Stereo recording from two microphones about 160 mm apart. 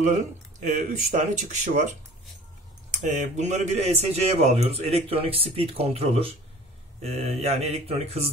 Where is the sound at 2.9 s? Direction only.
50° right (ahead or behind).